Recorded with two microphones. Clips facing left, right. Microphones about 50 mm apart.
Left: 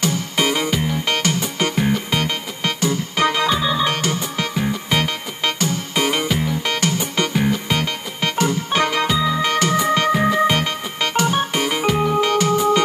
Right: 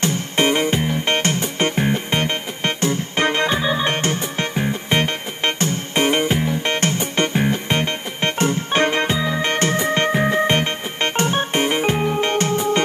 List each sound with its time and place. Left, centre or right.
0.0 s music: right